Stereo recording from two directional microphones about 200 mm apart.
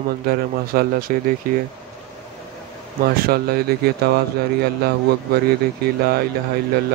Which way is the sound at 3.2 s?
50° right (ahead or behind).